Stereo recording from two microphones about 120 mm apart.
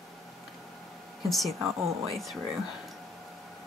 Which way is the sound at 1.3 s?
Centre (ahead or behind).